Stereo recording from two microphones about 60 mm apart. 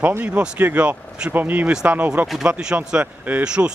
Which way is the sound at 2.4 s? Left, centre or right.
Centre.